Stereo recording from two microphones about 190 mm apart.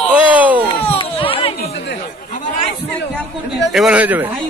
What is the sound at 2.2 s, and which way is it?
Speech, 40° left (ahead or behind).